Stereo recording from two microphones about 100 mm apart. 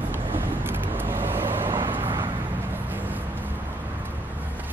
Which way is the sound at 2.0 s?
55° right (ahead or behind).